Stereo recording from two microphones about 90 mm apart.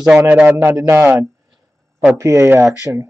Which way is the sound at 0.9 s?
30° right (ahead or behind).